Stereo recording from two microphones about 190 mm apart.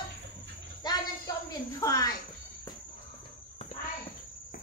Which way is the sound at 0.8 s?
20° left (ahead or behind).